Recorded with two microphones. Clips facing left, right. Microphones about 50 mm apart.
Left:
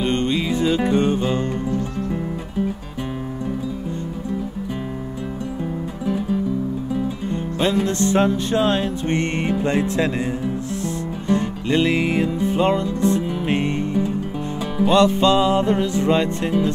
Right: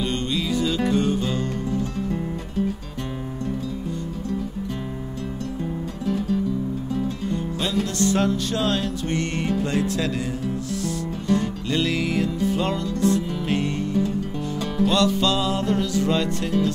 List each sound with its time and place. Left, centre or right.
0.0 s music: left
1.7 s music: centre
6.0 s music: centre
7.2 s music: left